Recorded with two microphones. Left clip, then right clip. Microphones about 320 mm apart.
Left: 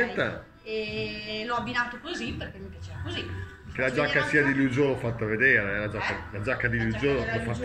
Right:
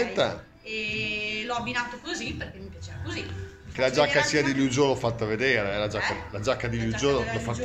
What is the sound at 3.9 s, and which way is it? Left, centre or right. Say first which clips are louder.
Speech: right 1 dB; centre.